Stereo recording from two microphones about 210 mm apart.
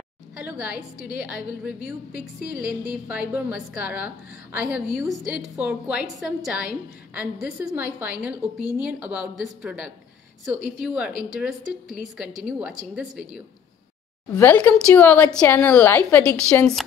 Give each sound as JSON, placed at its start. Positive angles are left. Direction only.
{"t": 0.4, "sound": "a woman's voice", "side_deg": -5}